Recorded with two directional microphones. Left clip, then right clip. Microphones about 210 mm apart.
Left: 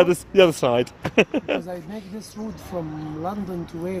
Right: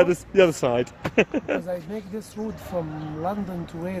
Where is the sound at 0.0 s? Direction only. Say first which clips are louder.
Left 2 dB; 20° left (ahead or behind).